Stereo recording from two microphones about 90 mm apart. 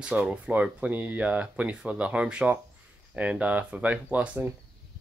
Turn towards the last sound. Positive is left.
turn(degrees=-20)  # may be behind; listen again after turning